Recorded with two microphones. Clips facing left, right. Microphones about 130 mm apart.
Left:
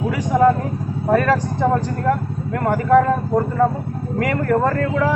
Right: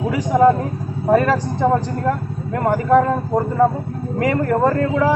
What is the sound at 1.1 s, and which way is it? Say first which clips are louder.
A man's voice: right 1 dB; 25° right (ahead or behind).